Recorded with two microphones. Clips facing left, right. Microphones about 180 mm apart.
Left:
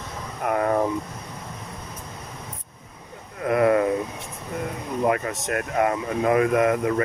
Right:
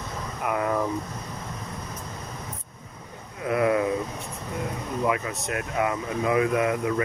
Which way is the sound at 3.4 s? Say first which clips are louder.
Left 4 dB; 50° left (ahead or behind).